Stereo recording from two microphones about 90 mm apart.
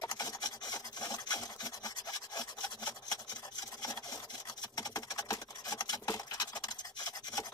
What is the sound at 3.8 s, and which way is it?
Rub, 45° left (ahead or behind).